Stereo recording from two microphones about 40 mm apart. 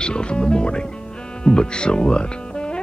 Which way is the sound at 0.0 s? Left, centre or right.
Left.